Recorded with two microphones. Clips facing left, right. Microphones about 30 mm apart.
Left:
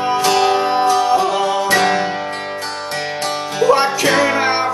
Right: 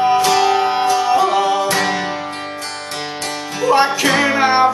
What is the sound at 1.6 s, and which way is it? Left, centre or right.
Music, centre.